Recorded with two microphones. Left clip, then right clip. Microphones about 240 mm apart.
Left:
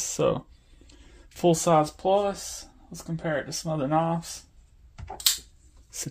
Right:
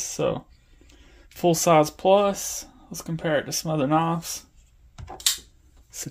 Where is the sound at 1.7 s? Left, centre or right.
Right.